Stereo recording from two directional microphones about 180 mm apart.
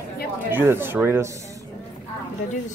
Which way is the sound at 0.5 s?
10° right (ahead or behind).